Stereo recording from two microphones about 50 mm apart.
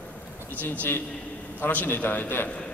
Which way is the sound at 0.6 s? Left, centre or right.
Left.